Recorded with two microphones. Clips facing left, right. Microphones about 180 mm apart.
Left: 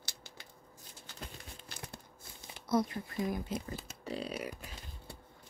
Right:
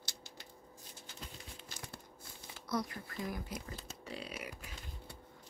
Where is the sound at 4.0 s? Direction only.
35° left (ahead or behind).